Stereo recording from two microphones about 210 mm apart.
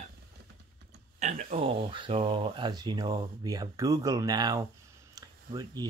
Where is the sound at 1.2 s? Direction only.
35° right (ahead or behind).